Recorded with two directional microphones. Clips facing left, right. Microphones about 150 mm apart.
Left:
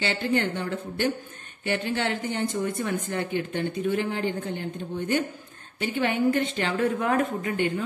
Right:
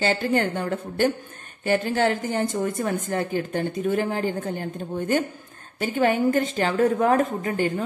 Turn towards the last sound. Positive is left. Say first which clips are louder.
# right 2 dB
turn(degrees=-40)  # may be behind; listen again after turning